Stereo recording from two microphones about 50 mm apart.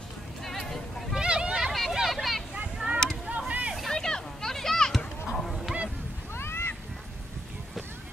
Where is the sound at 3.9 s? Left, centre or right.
Centre.